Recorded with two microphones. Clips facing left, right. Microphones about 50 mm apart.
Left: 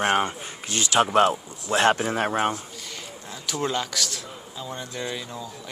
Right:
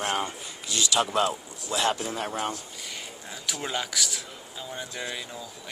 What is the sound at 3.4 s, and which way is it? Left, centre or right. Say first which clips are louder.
A man's voice: left 5 dB; centre.